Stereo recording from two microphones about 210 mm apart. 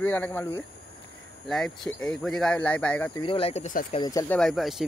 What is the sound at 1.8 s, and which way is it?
Speech, 5° left (ahead or behind).